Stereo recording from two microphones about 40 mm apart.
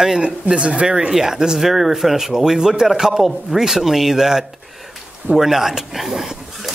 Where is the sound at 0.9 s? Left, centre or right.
Centre.